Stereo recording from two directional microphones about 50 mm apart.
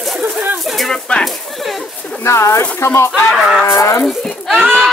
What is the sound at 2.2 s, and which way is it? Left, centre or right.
Speech, left.